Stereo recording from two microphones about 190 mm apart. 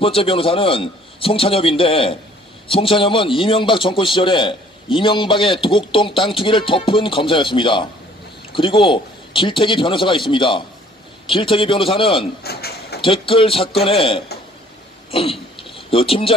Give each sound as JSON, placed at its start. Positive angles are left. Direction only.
{"t": 0.0, "sound": "a man's voice", "side_deg": 30}
{"t": 12.4, "sound": "a sound", "side_deg": 55}
{"t": 13.0, "sound": "a man's voice", "side_deg": 30}
{"t": 15.0, "sound": "throat clearing", "side_deg": 30}
{"t": 15.7, "sound": "speech", "side_deg": 30}